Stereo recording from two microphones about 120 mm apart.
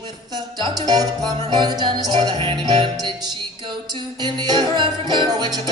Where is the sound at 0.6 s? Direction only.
35° right (ahead or behind).